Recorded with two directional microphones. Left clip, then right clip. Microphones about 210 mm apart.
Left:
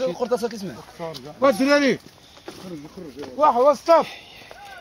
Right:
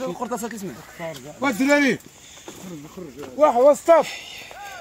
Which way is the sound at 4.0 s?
10° right (ahead or behind).